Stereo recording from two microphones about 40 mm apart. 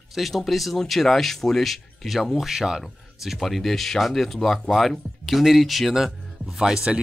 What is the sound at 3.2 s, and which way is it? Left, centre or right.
Speech, centre.